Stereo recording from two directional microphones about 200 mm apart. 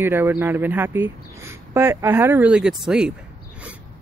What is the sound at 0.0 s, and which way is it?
Speech, 10° right (ahead or behind).